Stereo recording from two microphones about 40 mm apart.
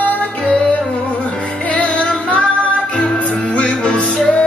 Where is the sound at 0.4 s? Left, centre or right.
Left.